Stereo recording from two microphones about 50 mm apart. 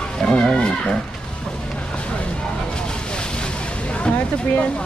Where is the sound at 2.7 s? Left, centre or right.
Centre.